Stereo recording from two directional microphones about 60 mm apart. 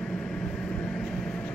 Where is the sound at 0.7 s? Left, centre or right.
Centre.